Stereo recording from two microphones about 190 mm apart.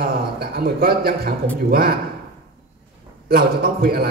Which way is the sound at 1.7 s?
55° right (ahead or behind).